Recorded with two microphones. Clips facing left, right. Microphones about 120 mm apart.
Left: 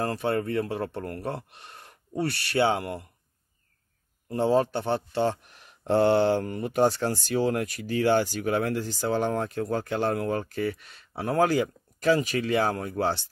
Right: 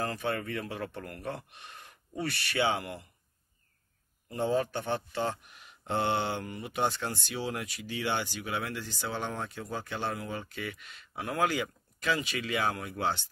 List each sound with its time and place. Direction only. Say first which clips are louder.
0.0 s speech: left 6 dB; 35° left (ahead or behind)
2.5 s speech: left 6 dB; 40° left (ahead or behind)
4.3 s speech: left 6 dB; 35° left (ahead or behind)